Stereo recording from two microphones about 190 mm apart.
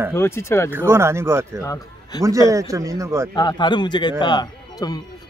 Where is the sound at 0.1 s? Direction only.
15° left (ahead or behind).